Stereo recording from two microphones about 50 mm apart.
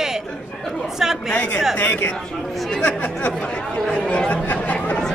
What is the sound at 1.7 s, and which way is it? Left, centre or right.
Speech, left.